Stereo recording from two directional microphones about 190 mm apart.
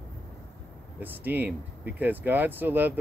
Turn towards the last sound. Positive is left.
turn(degrees=-10)  # may be behind; listen again after turning